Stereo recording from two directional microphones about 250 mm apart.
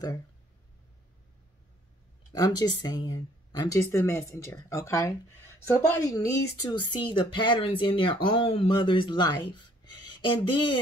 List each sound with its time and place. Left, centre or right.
2.3 s speech: centre